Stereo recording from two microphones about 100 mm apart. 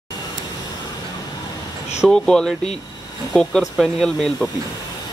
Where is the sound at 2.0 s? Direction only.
5° left (ahead or behind).